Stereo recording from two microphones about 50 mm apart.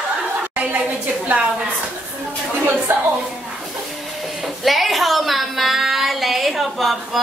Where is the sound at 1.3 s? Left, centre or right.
Right.